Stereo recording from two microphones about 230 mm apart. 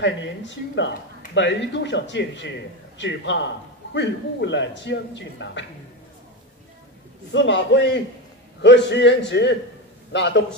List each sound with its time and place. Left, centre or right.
0.0 s a man's voice: left
7.3 s a man's voice: left